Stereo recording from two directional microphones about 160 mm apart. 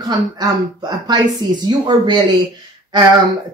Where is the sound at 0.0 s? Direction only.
25° right (ahead or behind).